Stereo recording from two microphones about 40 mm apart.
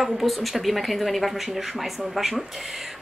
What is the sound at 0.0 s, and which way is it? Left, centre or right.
A woman's voice, centre.